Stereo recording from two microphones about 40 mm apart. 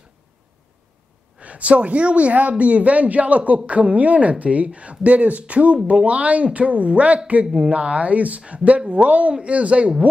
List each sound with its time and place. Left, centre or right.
1.4 s a man's voice: right